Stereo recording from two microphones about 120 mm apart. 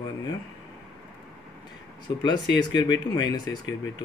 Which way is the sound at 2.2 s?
40° left (ahead or behind).